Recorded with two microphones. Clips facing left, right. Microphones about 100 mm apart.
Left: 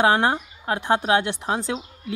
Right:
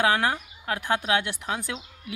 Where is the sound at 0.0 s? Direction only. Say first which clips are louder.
Left 4 dB; 25° left (ahead or behind).